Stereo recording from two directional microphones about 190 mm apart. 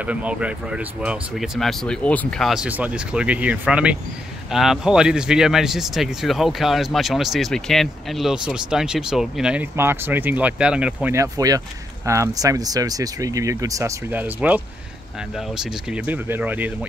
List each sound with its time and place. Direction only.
0.0 s speech: 5° right (ahead or behind)